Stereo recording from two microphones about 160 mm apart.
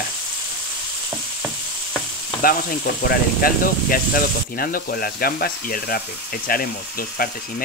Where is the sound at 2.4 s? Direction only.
65° left (ahead or behind).